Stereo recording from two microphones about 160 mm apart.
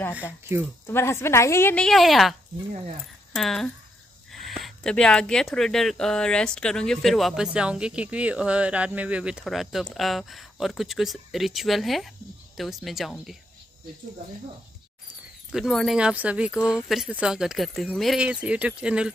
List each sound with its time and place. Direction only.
0.8 s a woman's voice: 15° left (ahead or behind)
1.9 s speech: centre (ahead or behind)
3.3 s speech: centre (ahead or behind)
15.5 s speech: centre (ahead or behind)